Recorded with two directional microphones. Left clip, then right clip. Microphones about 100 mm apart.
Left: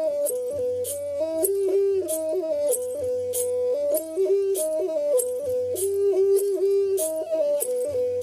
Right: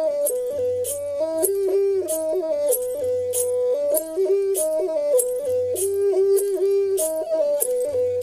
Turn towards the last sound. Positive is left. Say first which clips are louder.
# right 2 dB
turn(degrees=-35)  # may be behind; listen again after turning